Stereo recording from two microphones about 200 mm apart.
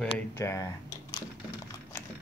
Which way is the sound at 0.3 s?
15° left (ahead or behind).